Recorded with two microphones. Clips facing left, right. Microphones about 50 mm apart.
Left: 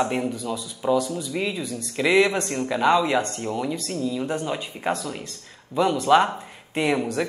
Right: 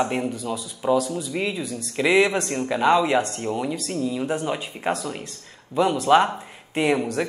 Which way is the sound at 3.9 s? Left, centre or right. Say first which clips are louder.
Right 2 dB; centre.